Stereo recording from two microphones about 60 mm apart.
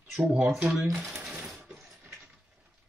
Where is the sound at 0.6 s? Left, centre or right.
Centre.